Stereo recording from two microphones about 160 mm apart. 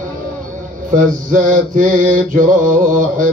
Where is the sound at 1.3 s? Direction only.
55° right (ahead or behind).